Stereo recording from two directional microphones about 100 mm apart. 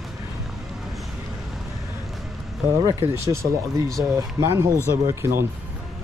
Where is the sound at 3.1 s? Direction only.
30° right (ahead or behind).